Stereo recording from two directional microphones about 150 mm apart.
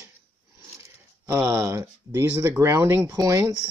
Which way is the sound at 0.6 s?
20° right (ahead or behind).